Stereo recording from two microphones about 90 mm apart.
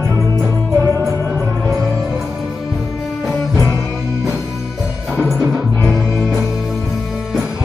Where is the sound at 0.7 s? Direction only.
35° right (ahead or behind).